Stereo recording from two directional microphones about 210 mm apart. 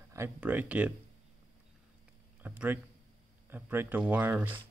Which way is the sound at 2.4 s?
10° right (ahead or behind).